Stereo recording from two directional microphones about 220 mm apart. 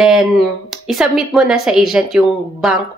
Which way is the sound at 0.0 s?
Centre (ahead or behind).